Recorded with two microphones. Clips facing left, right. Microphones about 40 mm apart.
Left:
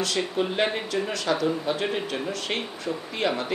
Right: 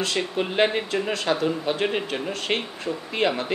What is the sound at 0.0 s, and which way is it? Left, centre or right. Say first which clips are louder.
Speech: even; right.